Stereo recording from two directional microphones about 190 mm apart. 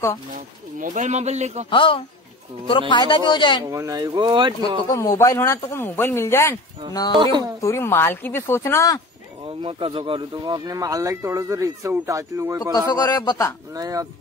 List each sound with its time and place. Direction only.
0.3 s speech: 45° right (ahead or behind)
1.7 s speech: 25° left (ahead or behind)
3.7 s speech: 20° right (ahead or behind)
4.8 s speech: 15° left (ahead or behind)
9.6 s speech: 30° right (ahead or behind)
12.7 s speech: 20° left (ahead or behind)
13.7 s speech: 20° right (ahead or behind)